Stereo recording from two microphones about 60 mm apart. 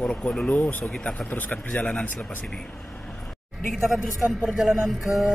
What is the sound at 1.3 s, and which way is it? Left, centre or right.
Speech, left.